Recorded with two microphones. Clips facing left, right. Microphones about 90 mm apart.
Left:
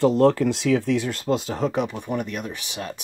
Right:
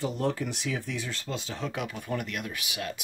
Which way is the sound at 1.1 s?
50° left (ahead or behind).